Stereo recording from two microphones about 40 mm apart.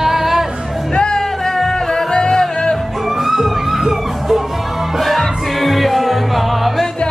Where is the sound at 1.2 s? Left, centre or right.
Centre.